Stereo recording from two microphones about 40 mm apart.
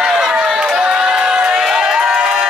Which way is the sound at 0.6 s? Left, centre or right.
Right.